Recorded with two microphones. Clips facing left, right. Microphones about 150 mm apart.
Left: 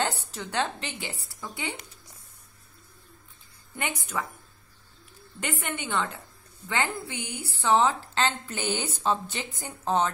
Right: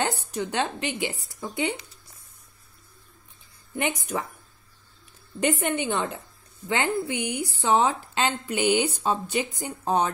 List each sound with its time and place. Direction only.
0.0 s a woman's voice: 15° right (ahead or behind)
3.7 s a woman's voice: 20° right (ahead or behind)
5.4 s a woman's voice: 20° right (ahead or behind)